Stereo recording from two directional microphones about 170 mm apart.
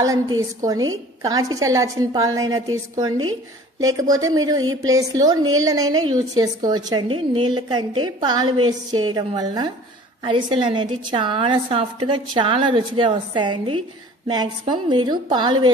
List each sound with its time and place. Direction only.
0.0 s a woman's voice: 20° right (ahead or behind)